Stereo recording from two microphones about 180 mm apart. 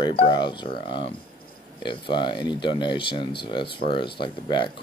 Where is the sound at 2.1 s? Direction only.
25° left (ahead or behind).